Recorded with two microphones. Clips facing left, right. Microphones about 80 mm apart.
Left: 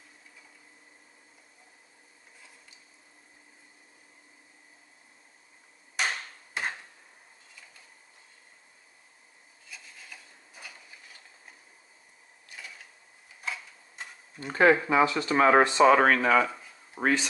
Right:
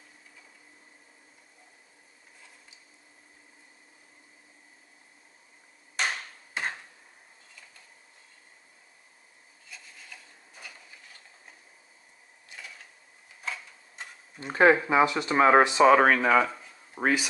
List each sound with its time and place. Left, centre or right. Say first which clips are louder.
5.9 s hammer: even; centre
9.7 s rub: even; centre
13.4 s a sound: even; centre
14.4 s speech: right 1 dB; centre
15.8 s speech: right 1 dB; centre